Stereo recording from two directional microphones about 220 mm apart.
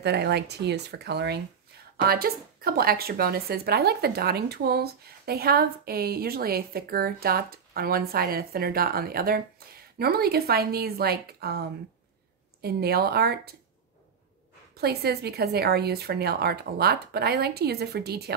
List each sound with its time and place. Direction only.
0.0 s a woman's voice: 50° right (ahead or behind)
14.8 s a woman's voice: 45° right (ahead or behind)